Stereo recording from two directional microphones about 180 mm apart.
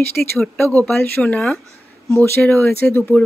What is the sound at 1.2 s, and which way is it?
Speech, centre (ahead or behind).